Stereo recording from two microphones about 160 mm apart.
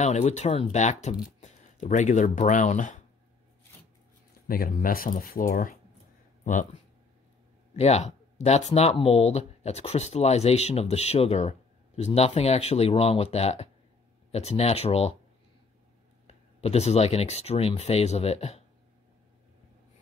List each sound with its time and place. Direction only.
0.0 s speech: 45° left (ahead or behind)
4.5 s speech: 60° left (ahead or behind); by 15.1 s 40° left (ahead or behind)
16.3 s speech: 40° left (ahead or behind)